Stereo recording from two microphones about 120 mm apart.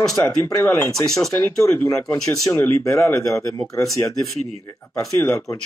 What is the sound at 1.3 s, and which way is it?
Speech, 15° left (ahead or behind).